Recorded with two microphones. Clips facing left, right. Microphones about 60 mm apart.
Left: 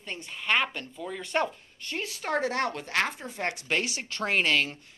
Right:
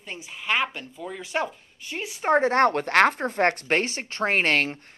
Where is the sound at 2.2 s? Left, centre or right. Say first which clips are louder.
Right 9 dB; right.